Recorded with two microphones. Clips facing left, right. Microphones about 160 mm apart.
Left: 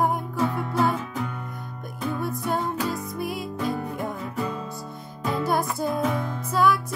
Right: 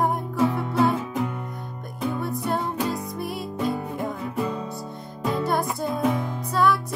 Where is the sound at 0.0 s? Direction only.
Centre (ahead or behind).